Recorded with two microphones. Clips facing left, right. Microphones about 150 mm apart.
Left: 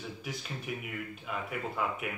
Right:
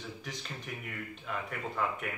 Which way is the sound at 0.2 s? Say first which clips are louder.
Left 3 dB; 5° left (ahead or behind).